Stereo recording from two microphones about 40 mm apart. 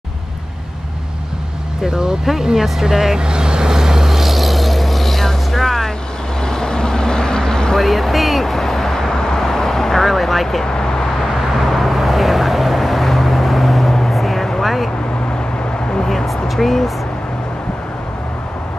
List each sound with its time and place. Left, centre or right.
1.8 s speech: centre
3.2 s vehicle: right; by 5.9 s centre
6.4 s vehicle: centre
7.7 s vehicle: centre
10.6 s vehicle: centre
11.7 s vehicle: centre
16.4 s speech: centre